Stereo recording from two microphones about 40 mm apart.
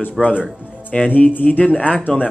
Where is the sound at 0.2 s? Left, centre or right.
Centre.